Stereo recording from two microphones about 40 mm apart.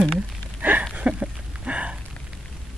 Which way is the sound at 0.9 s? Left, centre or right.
Right.